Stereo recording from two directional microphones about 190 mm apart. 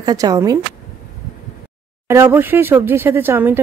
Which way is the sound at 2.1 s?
10° right (ahead or behind).